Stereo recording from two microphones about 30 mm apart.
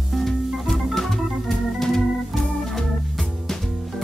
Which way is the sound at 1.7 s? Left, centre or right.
Centre.